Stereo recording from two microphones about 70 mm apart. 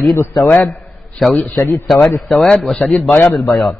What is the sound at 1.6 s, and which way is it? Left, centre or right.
Speech, left.